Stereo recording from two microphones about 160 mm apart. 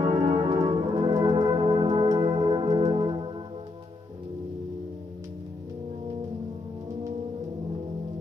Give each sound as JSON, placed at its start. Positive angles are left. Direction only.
{"t": 0.0, "sound": "brass instrument", "side_deg": -40}
{"t": 2.8, "sound": "music", "side_deg": -30}